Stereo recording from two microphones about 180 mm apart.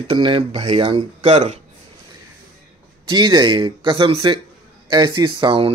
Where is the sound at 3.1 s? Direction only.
25° right (ahead or behind).